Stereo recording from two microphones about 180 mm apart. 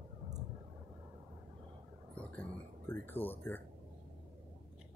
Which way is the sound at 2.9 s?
10° left (ahead or behind).